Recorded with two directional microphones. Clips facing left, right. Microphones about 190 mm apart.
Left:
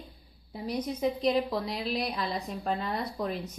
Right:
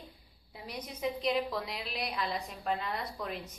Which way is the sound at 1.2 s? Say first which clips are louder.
Left 3 dB; 35° left (ahead or behind).